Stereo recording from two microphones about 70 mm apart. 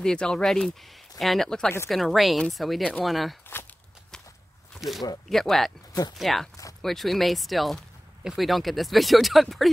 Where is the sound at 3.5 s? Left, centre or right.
Left.